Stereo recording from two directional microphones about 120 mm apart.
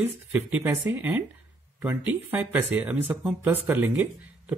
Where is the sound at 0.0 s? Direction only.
15° right (ahead or behind).